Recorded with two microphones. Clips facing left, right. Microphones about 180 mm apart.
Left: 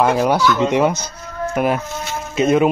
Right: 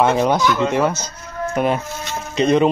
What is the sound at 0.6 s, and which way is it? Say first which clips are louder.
Speech: left 2 dB; 15° left (ahead or behind).